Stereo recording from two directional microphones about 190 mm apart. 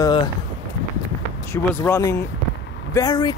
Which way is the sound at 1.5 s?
15° left (ahead or behind).